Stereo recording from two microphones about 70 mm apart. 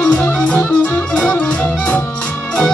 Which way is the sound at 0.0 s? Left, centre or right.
Centre.